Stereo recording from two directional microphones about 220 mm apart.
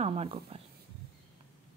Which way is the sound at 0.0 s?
25° right (ahead or behind).